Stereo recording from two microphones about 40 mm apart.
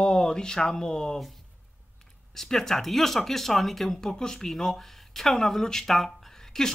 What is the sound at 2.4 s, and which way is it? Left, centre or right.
Speech, centre.